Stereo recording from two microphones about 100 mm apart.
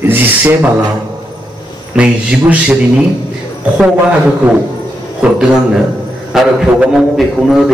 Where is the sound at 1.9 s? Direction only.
10° right (ahead or behind).